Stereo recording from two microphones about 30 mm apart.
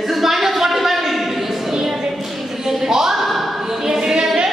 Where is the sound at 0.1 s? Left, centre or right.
Centre.